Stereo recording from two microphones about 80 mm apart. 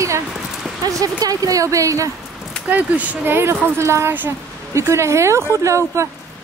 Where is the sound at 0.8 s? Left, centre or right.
Right.